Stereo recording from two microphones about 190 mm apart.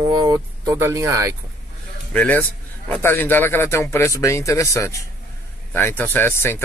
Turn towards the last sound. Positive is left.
turn(degrees=15)  # may be behind; listen again after turning